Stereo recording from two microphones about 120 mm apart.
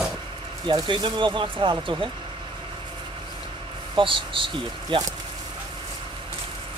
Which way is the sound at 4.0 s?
45° right (ahead or behind).